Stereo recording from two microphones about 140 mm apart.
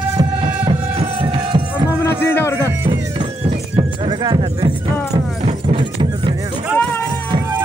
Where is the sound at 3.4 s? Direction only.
35° right (ahead or behind).